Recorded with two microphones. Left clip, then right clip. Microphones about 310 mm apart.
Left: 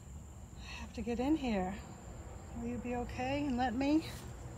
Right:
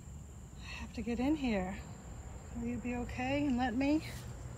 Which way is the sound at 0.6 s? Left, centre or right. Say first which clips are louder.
Even; centre.